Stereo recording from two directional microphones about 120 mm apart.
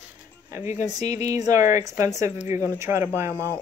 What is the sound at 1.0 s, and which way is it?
Speech, 70° left (ahead or behind).